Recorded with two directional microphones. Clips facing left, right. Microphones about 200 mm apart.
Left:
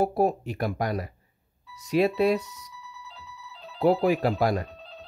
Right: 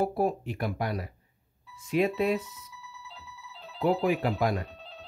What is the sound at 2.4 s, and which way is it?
Speech, 75° left (ahead or behind).